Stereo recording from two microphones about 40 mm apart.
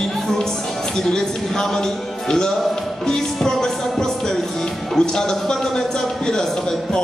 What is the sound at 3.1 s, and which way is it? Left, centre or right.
Music, centre.